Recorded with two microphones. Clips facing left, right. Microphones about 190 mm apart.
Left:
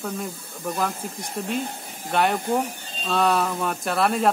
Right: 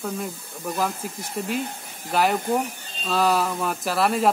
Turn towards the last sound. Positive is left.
turn(degrees=0)  # may be behind; listen again after turning